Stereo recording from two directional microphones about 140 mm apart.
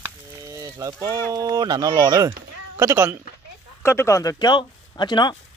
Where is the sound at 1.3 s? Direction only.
25° right (ahead or behind).